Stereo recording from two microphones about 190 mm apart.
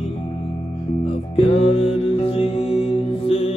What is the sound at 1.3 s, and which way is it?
Music, 30° left (ahead or behind).